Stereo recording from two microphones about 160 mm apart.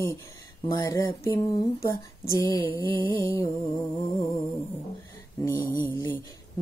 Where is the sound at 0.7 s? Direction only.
20° left (ahead or behind).